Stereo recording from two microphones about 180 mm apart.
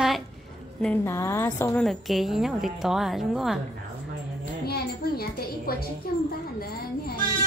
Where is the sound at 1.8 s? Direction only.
Centre (ahead or behind).